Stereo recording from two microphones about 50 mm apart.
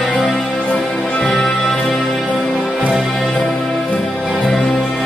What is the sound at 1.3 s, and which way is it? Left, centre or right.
Music, centre.